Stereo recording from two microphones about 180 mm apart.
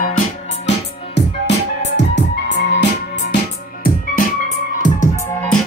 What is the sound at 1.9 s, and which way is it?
Music, 80° left.